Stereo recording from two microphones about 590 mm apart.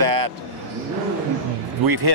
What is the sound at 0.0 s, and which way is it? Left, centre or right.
Vehicle, right.